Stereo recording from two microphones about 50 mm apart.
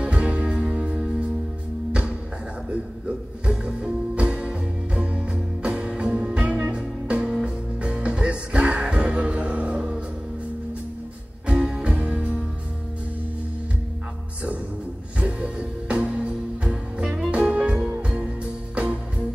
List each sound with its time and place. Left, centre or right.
0.0 s music: right
3.4 s music: right
11.4 s music: centre
15.1 s music: right